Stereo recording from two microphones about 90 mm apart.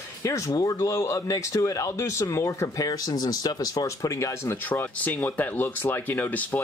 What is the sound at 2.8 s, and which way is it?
Speech, 45° left (ahead or behind).